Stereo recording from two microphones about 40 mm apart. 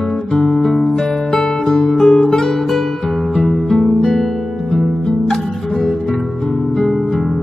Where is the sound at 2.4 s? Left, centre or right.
Centre.